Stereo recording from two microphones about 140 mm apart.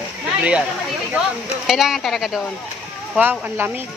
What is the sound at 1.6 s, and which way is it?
Speech, 5° right (ahead or behind).